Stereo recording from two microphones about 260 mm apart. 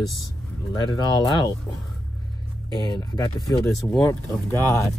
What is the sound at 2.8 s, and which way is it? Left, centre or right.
Speech, centre.